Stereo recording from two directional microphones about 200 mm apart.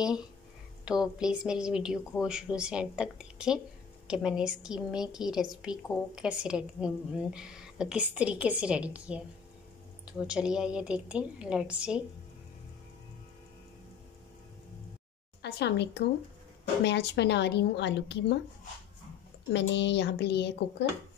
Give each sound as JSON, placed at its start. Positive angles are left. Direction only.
{"t": 0.8, "sound": "a woman's voice", "side_deg": -5}
{"t": 15.4, "sound": "speech", "side_deg": 60}
{"t": 19.5, "sound": "speech", "side_deg": 60}